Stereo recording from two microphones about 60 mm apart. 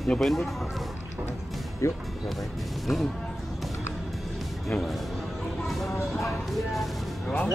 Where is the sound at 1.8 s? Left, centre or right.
Left.